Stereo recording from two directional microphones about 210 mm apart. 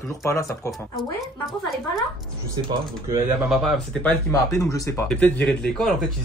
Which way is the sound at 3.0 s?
15° right (ahead or behind).